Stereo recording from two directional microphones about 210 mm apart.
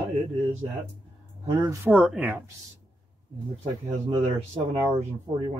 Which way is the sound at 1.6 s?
15° right (ahead or behind).